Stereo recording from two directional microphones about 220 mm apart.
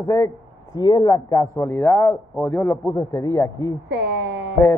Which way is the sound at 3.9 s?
50° right (ahead or behind).